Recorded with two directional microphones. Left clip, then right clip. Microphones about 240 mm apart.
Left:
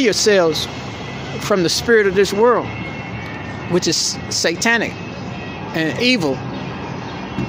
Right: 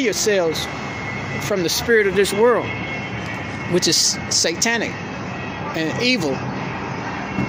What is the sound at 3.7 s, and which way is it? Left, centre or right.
Speech, centre.